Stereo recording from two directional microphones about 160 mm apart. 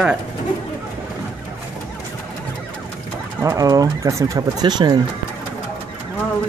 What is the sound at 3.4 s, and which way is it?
Speech, 20° right (ahead or behind).